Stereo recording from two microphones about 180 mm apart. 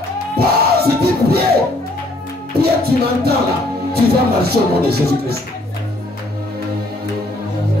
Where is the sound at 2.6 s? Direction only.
60° right (ahead or behind).